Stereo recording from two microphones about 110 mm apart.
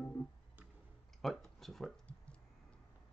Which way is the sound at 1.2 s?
Centre (ahead or behind).